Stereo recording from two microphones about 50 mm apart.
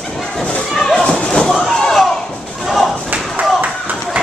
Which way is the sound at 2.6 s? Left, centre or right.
Centre.